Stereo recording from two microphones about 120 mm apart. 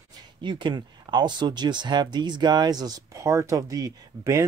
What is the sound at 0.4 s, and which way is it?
Speech, 40° right (ahead or behind).